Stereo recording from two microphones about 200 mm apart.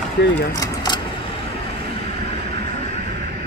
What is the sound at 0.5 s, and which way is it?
Keys jangling, 20° left (ahead or behind).